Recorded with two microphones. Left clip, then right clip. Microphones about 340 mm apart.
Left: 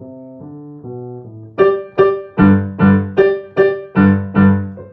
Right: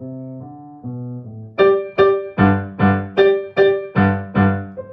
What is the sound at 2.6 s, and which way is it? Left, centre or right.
Music, centre.